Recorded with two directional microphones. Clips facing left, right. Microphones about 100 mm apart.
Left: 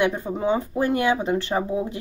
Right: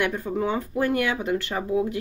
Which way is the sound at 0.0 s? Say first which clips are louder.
Left 2 dB; 20° left (ahead or behind).